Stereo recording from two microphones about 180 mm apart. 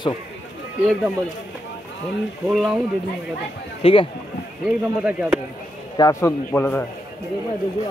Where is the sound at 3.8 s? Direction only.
30° left (ahead or behind).